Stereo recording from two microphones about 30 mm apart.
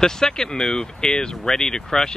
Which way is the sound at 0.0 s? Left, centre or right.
Left.